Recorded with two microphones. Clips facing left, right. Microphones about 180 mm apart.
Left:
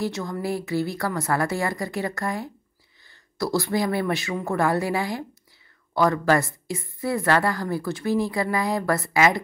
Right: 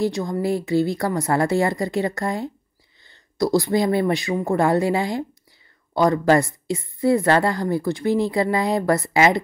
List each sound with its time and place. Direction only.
0.0 s a woman's voice: 20° right (ahead or behind)